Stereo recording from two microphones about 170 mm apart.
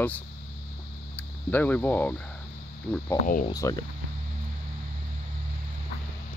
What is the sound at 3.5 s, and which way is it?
Speech, 20° left (ahead or behind).